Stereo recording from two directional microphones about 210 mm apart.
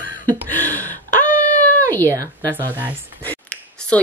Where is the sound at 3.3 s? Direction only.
5° left (ahead or behind).